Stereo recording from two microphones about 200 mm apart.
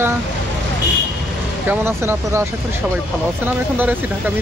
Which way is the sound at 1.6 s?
10° right (ahead or behind).